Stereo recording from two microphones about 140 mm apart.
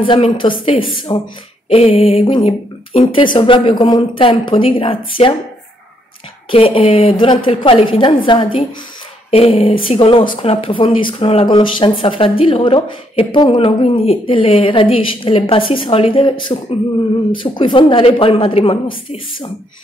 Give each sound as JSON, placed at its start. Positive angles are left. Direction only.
{"t": 0.0, "sound": "speech", "side_deg": 40}
{"t": 1.7, "sound": "a sound", "side_deg": 45}
{"t": 2.2, "sound": "speech", "side_deg": 40}
{"t": 6.5, "sound": "speech", "side_deg": 45}
{"t": 9.3, "sound": "a sound", "side_deg": 45}
{"t": 9.8, "sound": "speech", "side_deg": 40}